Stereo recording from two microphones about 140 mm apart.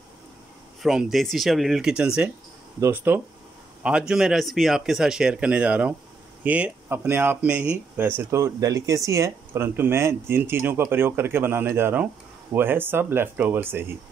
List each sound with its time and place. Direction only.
0.8 s speech: 5° right (ahead or behind)